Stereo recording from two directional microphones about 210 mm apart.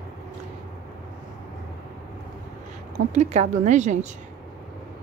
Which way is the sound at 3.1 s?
35° right (ahead or behind).